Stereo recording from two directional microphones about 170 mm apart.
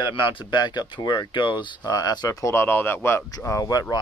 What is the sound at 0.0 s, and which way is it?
Speech, 30° left (ahead or behind).